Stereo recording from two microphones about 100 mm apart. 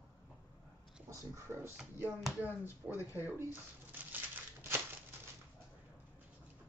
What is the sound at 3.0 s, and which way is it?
Speech, 30° left (ahead or behind).